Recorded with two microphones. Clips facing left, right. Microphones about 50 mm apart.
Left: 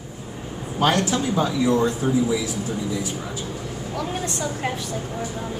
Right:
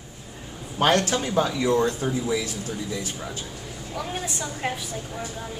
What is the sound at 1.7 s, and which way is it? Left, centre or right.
Speech, centre.